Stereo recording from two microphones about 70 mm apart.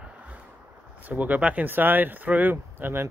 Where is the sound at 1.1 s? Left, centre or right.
Right.